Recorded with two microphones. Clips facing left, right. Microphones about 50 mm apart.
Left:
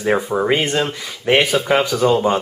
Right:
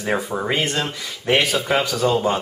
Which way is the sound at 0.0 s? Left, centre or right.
Centre.